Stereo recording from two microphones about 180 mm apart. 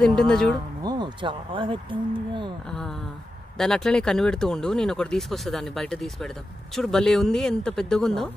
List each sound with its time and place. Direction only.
0.0 s speech: 5° left (ahead or behind)
0.8 s speech: 25° right (ahead or behind)
2.7 s speech: centre (ahead or behind)